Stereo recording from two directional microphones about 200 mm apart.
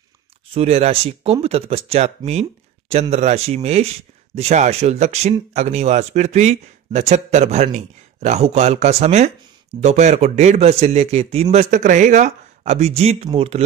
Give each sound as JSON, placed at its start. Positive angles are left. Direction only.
{"t": 0.6, "sound": "speech", "side_deg": -30}